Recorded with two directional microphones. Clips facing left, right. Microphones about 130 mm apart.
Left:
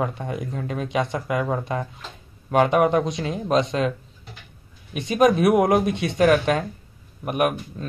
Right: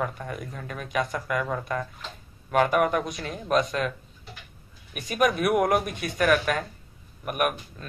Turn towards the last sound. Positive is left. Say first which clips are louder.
# left 4 dB
turn(degrees=25)  # may be behind; listen again after turning